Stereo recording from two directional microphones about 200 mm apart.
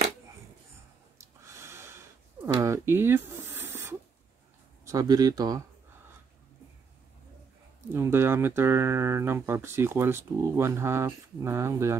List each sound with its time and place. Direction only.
1.1 s snort: 15° right (ahead or behind)
2.4 s snake: 15° right (ahead or behind)
4.8 s speech: 20° right (ahead or behind)
7.9 s speech: 10° right (ahead or behind)